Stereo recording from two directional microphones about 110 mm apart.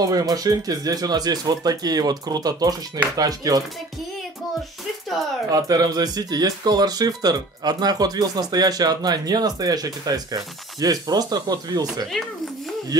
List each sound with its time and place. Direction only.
0.0 s speech: 35° right (ahead or behind)
5.5 s speech: 35° right (ahead or behind)